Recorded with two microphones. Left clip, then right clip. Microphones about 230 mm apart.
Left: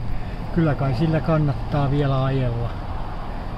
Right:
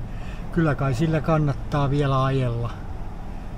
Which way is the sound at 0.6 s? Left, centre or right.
Right.